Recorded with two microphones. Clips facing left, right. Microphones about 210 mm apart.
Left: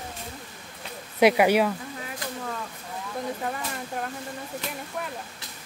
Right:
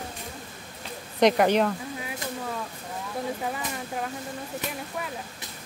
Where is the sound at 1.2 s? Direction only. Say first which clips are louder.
Left 1 dB; 10° left (ahead or behind).